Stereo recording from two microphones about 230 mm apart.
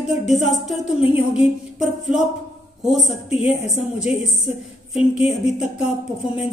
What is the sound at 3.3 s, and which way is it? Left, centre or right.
Speech, left.